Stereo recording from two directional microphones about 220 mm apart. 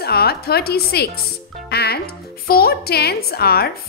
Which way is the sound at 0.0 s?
45° left (ahead or behind).